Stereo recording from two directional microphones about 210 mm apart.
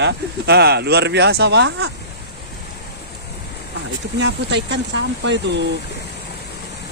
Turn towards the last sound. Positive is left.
turn(degrees=-55)  # may be behind; listen again after turning